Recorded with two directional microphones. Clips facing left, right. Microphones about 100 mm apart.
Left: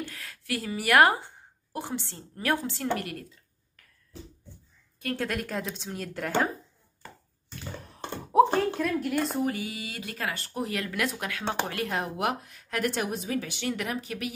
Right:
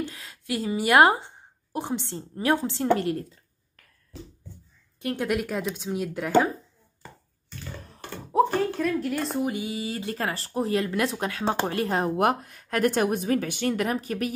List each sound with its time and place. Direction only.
0.0 s a woman's voice: 20° right (ahead or behind)
5.0 s a woman's voice: 20° right (ahead or behind)
5.3 s speech: 5° right (ahead or behind)
8.0 s a sound: 25° left (ahead or behind)
8.7 s speech: 5° left (ahead or behind)
9.5 s speech: 25° right (ahead or behind)
12.2 s speech: 50° right (ahead or behind)